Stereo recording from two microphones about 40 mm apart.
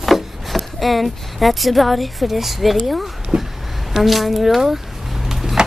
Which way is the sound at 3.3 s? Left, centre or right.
Right.